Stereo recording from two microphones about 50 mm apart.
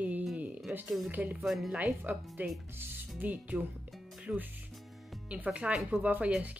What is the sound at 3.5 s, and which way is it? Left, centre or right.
Speech, centre.